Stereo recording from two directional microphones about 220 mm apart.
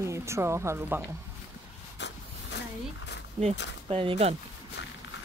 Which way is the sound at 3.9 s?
25° right (ahead or behind).